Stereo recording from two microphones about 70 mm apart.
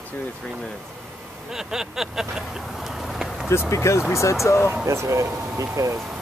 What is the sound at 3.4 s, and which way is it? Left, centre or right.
Speech, left.